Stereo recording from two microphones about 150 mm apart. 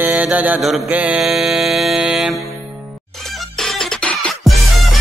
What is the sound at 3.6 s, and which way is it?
Music, 5° left (ahead or behind).